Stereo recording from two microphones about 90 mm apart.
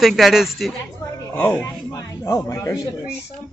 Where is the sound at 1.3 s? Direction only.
15° left (ahead or behind).